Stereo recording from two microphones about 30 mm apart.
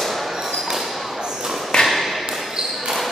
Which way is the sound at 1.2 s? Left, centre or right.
Centre.